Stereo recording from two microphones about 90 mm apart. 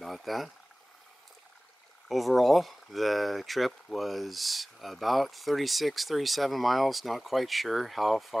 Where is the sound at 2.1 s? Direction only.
Centre (ahead or behind).